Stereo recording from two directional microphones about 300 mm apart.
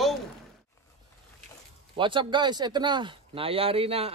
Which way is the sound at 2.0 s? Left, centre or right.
Centre.